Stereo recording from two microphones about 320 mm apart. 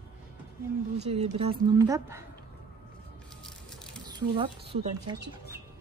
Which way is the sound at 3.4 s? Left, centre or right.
Centre.